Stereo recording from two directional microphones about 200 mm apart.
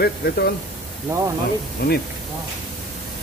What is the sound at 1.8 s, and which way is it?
Speech, 50° left (ahead or behind).